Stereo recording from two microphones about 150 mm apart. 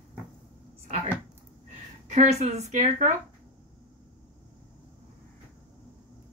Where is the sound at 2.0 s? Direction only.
50° right (ahead or behind).